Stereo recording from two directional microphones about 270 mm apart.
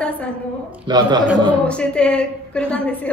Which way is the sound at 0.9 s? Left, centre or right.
Centre.